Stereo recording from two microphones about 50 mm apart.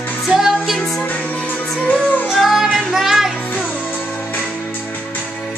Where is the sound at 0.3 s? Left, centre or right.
Centre.